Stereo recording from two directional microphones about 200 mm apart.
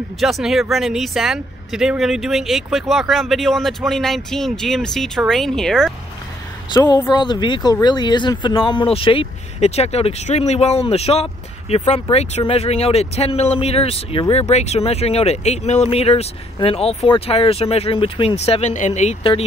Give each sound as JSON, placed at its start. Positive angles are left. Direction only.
{"t": 0.2, "sound": "speech", "side_deg": 0}
{"t": 6.7, "sound": "speech", "side_deg": 20}